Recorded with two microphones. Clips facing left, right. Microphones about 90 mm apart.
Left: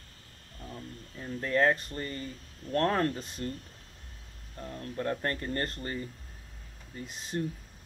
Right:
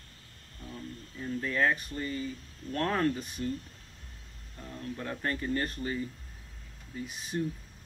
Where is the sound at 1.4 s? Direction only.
40° left (ahead or behind).